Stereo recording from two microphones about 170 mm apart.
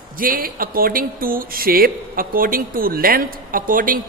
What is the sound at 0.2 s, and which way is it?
A man's voice, 55° right (ahead or behind).